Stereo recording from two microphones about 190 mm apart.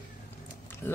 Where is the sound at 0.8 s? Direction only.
10° left (ahead or behind).